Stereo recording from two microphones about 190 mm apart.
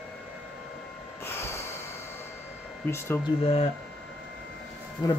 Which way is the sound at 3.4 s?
30° left (ahead or behind).